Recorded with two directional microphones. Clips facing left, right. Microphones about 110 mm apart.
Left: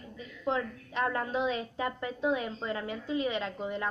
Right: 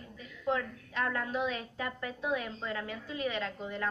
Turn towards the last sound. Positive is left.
turn(degrees=20)  # may be behind; listen again after turning